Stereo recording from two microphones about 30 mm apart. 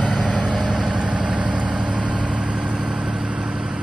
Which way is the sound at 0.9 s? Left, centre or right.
Right.